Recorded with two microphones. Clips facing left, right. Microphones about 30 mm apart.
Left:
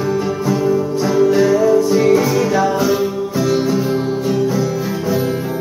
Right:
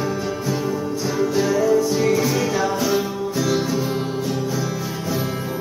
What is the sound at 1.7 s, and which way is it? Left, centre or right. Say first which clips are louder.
Music: left 6 dB; centre.